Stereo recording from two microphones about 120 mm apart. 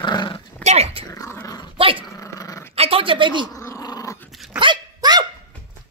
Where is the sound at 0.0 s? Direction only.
40° left (ahead or behind).